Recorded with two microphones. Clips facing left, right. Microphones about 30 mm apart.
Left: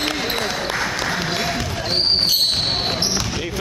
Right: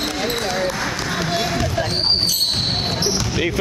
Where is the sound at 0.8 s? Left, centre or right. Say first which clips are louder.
Left 1 dB; centre.